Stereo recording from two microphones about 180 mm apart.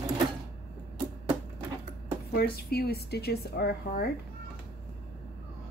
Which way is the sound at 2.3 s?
60° left (ahead or behind).